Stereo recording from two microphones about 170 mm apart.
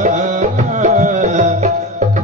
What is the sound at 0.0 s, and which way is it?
Music, 45° right (ahead or behind).